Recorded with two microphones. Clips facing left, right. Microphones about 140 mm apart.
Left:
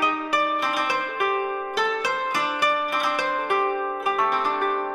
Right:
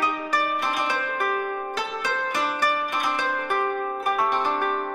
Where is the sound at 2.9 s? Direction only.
Centre (ahead or behind).